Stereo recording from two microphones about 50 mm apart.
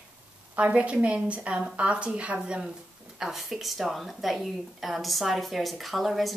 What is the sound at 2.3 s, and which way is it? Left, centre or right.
A woman's voice, centre.